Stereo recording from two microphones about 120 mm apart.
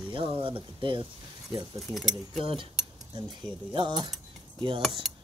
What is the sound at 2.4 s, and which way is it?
Speech, 50° right (ahead or behind).